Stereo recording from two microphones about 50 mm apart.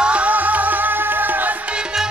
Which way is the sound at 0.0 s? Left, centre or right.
Right.